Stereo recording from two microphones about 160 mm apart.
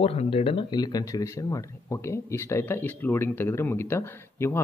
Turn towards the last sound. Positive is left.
turn(degrees=15)  # may be behind; listen again after turning